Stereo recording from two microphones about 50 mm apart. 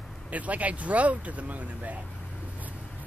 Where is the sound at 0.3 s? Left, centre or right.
Right.